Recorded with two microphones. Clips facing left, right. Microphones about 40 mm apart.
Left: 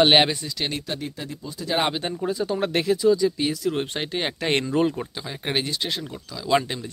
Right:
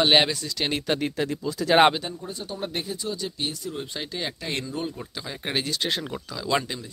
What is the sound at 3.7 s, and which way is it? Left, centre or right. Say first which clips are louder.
Speech: left 7 dB; left.